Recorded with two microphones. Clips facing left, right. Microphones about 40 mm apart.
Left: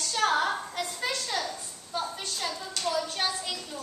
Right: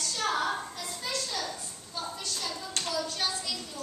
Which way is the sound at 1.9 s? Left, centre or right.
Left.